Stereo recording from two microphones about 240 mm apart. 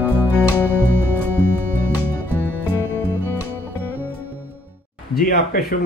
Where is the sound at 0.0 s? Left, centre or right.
Centre.